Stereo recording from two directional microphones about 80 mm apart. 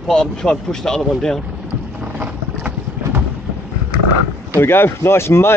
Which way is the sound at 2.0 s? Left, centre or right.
Centre.